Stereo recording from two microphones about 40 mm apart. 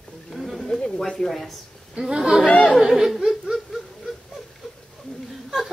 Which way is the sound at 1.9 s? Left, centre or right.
Centre.